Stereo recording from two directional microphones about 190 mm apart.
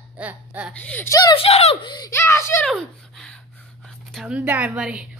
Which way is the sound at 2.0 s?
15° left (ahead or behind).